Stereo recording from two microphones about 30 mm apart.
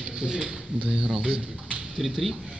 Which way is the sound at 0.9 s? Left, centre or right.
Right.